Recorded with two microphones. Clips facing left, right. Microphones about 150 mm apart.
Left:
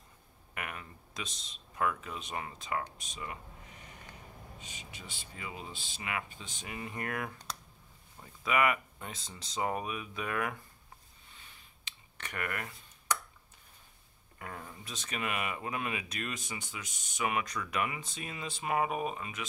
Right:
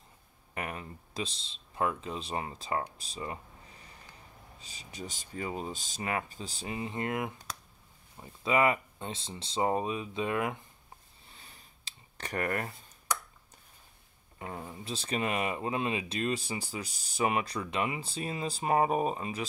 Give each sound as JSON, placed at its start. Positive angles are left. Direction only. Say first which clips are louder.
{"t": 0.6, "sound": "speech", "louder": "right 4 dB", "side_deg": -30}
{"t": 11.2, "sound": "scissors", "louder": "right 3 dB", "side_deg": -35}
{"t": 14.4, "sound": "speech", "louder": "right 4 dB", "side_deg": -25}